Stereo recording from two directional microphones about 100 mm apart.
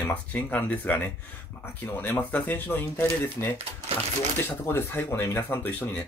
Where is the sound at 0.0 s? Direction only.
15° left (ahead or behind).